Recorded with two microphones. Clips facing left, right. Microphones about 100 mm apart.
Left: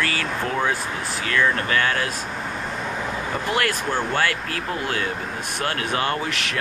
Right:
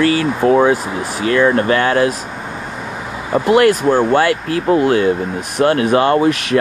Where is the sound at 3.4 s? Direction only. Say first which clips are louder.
Right 14 dB; 15° right (ahead or behind).